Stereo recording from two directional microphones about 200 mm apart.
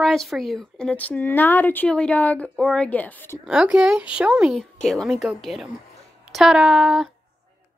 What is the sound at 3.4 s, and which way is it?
Speech, 5° right (ahead or behind).